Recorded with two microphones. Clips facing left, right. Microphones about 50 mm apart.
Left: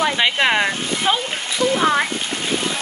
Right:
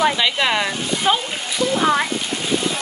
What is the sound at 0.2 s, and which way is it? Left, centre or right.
Speech, centre.